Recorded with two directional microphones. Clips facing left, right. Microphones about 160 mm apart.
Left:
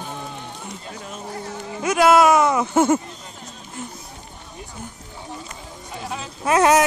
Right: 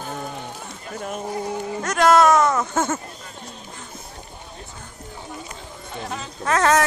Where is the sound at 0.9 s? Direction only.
55° right (ahead or behind).